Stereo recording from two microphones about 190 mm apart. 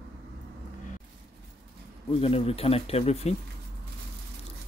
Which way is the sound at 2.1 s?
30° left (ahead or behind).